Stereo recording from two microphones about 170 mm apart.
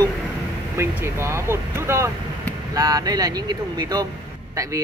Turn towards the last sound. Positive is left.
turn(degrees=-20)  # may be behind; listen again after turning